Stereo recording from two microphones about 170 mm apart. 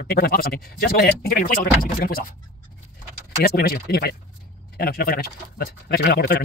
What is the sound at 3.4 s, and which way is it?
Speech, 65° left (ahead or behind).